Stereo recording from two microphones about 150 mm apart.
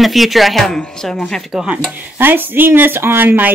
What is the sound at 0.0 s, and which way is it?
Speech, centre (ahead or behind).